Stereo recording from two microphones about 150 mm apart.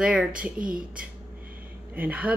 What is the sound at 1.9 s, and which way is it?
Speech, 10° right (ahead or behind).